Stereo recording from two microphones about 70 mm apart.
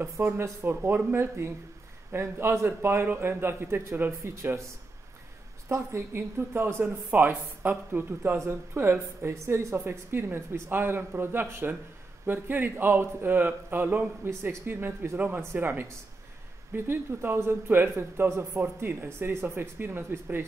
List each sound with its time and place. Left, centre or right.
0.0 s a man's voice: right
5.7 s a man's voice: right